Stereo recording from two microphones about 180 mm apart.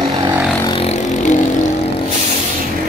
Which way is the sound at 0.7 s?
35° left (ahead or behind).